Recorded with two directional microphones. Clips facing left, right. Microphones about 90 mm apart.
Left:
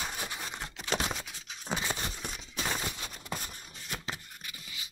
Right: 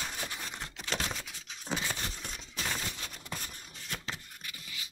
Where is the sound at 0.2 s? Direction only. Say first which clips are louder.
Left 2 dB; 20° left (ahead or behind).